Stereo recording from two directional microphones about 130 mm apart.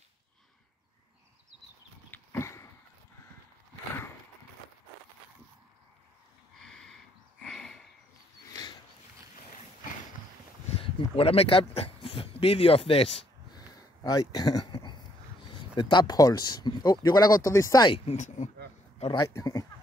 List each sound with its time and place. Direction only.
2.0 s dog: 15° left (ahead or behind)
6.6 s a sound: 5° left (ahead or behind)
10.7 s speech: 45° left (ahead or behind)
13.6 s a sound: 30° left (ahead or behind)
15.4 s speech: 40° left (ahead or behind)
18.0 s speech: 65° left (ahead or behind)
18.9 s a man's voice: 40° left (ahead or behind)
19.2 s speech: 25° left (ahead or behind)